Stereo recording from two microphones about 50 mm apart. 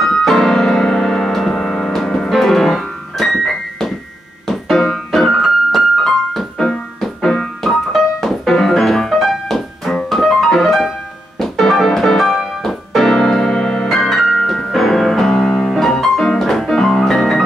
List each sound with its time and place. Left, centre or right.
0.0 s music: centre
5.2 s piano: centre
6.0 s keyboard: centre
10.0 s music: centre
11.3 s piano: centre